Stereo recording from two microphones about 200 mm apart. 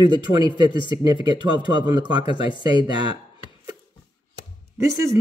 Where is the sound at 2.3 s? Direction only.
25° left (ahead or behind).